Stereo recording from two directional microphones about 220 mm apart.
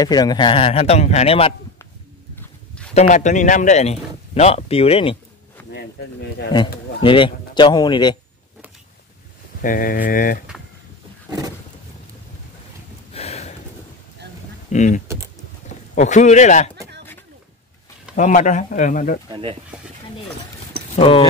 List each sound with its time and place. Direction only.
0.0 s speech: 20° left (ahead or behind)
2.9 s speech: 30° left (ahead or behind)
5.7 s speech: 50° left (ahead or behind)
6.5 s speech: 20° left (ahead or behind)
9.6 s speech: 40° left (ahead or behind)
11.2 s roaring cats: 15° right (ahead or behind)
13.1 s a sound: 30° left (ahead or behind)
14.7 s speech: 35° left (ahead or behind)
18.1 s speech: 35° left (ahead or behind)
19.2 s speech: 20° right (ahead or behind)
19.7 s speech: 5° right (ahead or behind)
20.9 s speech: 25° left (ahead or behind)